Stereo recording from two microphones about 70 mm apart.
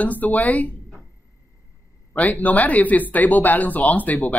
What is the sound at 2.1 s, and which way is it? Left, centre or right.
Speech, left.